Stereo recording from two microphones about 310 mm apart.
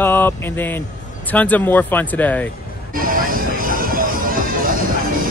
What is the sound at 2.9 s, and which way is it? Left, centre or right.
Music, right.